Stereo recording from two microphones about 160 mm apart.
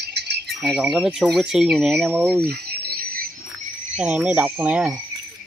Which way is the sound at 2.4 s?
70° right (ahead or behind).